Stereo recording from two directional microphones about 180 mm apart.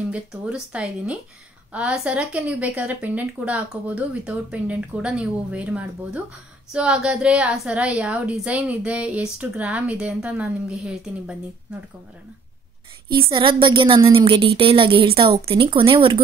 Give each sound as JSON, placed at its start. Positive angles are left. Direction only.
{"t": 0.1, "sound": "a woman's voice", "side_deg": -5}
{"t": 13.1, "sound": "a woman's voice", "side_deg": -30}